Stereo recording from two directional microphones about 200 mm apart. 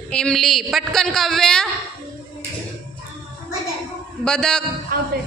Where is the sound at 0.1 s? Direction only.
Centre (ahead or behind).